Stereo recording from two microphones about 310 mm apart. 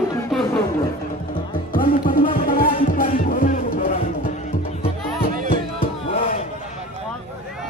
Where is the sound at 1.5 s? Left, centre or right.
Left.